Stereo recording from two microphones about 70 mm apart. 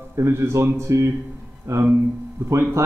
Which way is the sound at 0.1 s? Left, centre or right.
Right.